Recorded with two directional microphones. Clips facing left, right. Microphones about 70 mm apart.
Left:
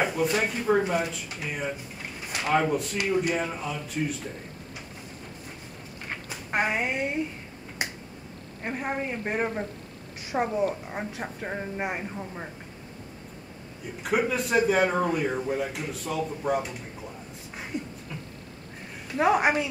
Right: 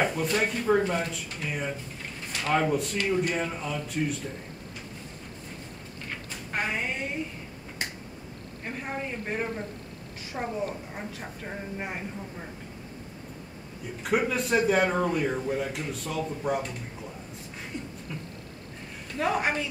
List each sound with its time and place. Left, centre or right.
0.0 s a man's voice: centre
6.2 s a woman's voice: centre
7.8 s finger snapping: centre
8.6 s a woman's voice: left
14.0 s a man's voice: centre
17.7 s beatboxing: centre
19.2 s speech: centre